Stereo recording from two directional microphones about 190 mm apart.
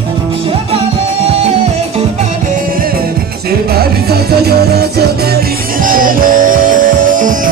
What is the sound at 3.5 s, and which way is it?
Music, 55° right (ahead or behind).